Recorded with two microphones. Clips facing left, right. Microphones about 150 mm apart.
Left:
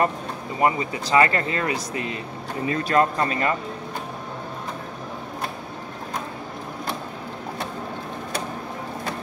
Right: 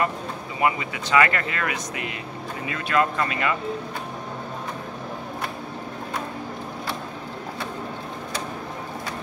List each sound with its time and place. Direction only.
0.6 s speech: 35° left (ahead or behind)